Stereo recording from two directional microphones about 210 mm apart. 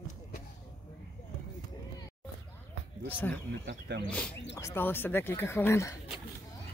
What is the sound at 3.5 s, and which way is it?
Speech, 55° right (ahead or behind).